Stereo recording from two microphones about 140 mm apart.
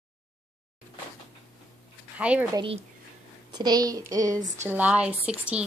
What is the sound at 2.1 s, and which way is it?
Speech, 10° right (ahead or behind).